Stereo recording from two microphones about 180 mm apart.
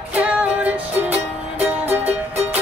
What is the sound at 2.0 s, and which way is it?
Music, 35° right (ahead or behind).